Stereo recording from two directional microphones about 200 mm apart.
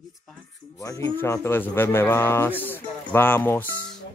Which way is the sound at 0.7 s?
15° left (ahead or behind).